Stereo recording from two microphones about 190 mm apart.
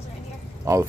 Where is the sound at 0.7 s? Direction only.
15° right (ahead or behind).